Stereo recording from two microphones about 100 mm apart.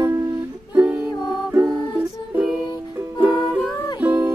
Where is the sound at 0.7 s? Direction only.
10° right (ahead or behind).